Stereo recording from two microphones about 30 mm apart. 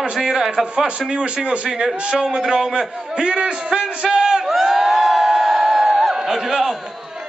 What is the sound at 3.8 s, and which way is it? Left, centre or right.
Speech, centre.